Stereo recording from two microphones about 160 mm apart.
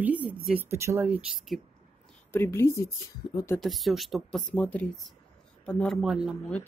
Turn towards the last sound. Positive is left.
turn(degrees=-5)  # may be behind; listen again after turning